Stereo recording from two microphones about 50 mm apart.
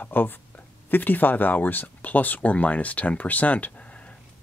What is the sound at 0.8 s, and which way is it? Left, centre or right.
Speech, left.